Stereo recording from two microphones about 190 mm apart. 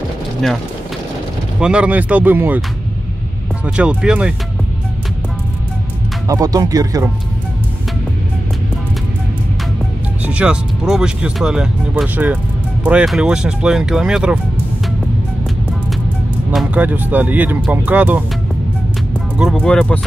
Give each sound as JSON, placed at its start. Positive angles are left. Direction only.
{"t": 1.6, "sound": "speech", "side_deg": -5}
{"t": 3.6, "sound": "speech", "side_deg": -5}
{"t": 6.2, "sound": "speech", "side_deg": -20}
{"t": 10.2, "sound": "speech", "side_deg": -5}
{"t": 16.5, "sound": "speech", "side_deg": -10}
{"t": 19.3, "sound": "speech", "side_deg": -5}